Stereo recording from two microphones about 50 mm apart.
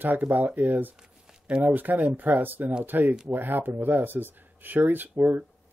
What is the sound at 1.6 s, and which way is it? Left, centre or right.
Speech, right.